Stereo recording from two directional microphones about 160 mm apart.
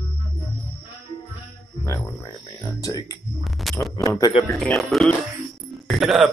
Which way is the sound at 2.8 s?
20° left (ahead or behind).